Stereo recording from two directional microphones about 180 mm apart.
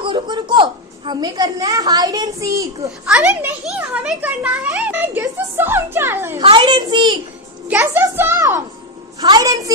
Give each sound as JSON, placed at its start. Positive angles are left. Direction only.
{"t": 0.0, "sound": "a child's voice", "side_deg": -25}
{"t": 3.1, "sound": "a child's voice", "side_deg": -5}
{"t": 6.4, "sound": "a child's voice", "side_deg": -25}
{"t": 7.6, "sound": "a child's voice", "side_deg": -10}